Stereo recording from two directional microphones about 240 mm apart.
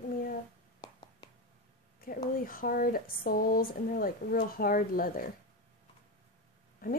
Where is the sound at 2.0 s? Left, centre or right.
Left.